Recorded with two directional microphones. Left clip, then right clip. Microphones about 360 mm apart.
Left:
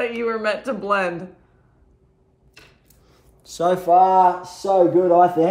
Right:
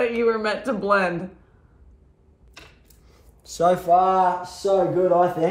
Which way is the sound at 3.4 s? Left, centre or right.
Centre.